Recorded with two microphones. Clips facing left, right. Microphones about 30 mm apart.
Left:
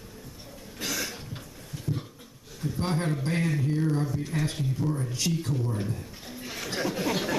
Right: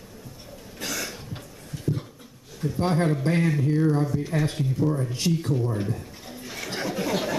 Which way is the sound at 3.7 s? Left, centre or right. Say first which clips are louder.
Right 5 dB; centre.